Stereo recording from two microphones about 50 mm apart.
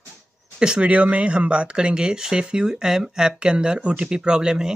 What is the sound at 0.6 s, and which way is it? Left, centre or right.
Speech, centre.